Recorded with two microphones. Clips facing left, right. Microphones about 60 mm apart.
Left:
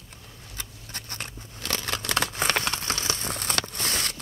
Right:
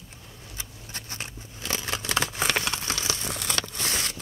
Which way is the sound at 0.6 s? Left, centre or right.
Left.